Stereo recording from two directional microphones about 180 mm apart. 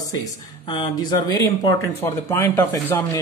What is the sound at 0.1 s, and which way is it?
Speech, 25° left (ahead or behind).